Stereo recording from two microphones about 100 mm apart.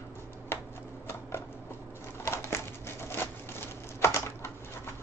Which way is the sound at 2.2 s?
25° left (ahead or behind).